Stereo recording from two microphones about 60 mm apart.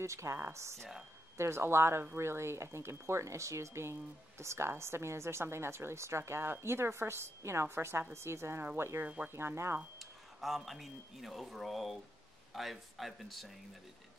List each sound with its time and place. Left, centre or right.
0.0 s speech: right
9.0 s speech: right
9.3 s speech: right
9.9 s speech: centre